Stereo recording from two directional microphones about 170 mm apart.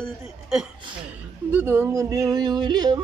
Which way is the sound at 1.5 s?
10° right (ahead or behind).